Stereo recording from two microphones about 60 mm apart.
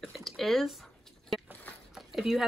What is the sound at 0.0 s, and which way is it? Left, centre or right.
Speech, centre.